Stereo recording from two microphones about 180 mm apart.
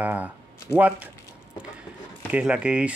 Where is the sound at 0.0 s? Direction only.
10° right (ahead or behind).